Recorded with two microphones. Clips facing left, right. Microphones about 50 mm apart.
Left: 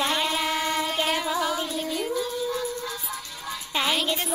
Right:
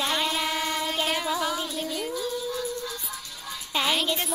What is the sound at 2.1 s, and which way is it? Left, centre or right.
Music, left.